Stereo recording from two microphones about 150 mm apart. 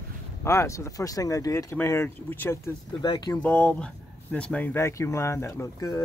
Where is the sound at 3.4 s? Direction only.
10° left (ahead or behind).